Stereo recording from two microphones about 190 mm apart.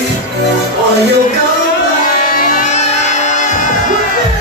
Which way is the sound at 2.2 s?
45° left (ahead or behind).